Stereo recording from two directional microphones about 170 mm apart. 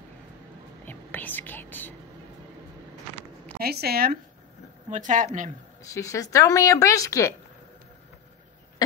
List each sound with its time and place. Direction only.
0.8 s whispering: 10° left (ahead or behind)
3.5 s speech: 65° right (ahead or behind)
4.8 s speech: 45° right (ahead or behind)
5.9 s speech: 20° left (ahead or behind)